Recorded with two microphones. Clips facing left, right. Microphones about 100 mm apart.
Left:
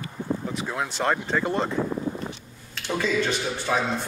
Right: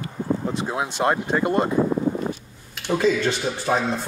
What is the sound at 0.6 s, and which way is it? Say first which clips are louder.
Speech: right 3 dB; 20° right (ahead or behind).